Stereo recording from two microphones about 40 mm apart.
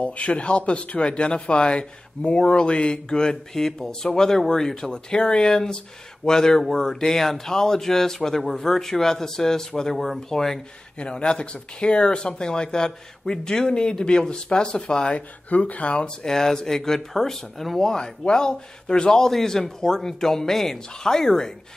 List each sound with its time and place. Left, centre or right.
0.0 s speech: left; by 10.6 s centre
11.0 s speech: left
15.1 s speech: left
16.3 s speech: centre